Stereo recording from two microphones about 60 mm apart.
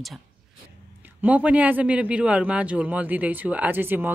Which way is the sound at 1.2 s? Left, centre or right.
Right.